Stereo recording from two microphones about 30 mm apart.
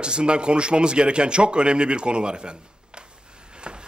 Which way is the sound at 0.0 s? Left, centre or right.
Right.